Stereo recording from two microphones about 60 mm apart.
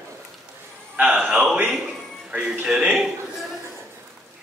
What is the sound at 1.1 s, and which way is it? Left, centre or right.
Speech, centre.